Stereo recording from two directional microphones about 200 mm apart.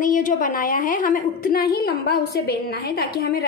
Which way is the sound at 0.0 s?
40° left (ahead or behind).